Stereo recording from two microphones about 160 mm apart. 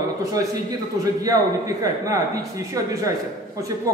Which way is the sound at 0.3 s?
25° right (ahead or behind).